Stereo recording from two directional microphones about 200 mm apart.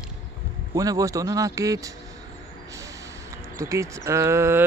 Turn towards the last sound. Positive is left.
turn(degrees=-10)  # may be behind; listen again after turning